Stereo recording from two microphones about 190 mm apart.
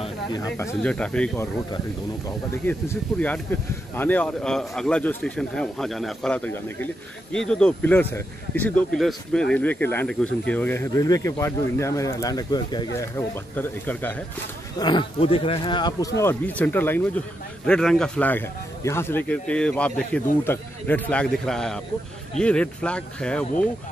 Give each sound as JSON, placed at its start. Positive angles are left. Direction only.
{"t": 0.0, "sound": "speech", "side_deg": 20}
{"t": 14.8, "sound": "a man's voice", "side_deg": 25}